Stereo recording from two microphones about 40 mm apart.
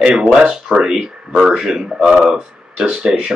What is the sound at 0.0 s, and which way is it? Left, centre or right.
Speech, centre.